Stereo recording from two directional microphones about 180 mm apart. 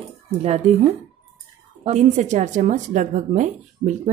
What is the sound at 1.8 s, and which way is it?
Speech, 40° right (ahead or behind).